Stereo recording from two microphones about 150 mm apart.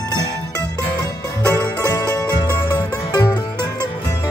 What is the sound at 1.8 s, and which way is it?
Music, 25° left (ahead or behind).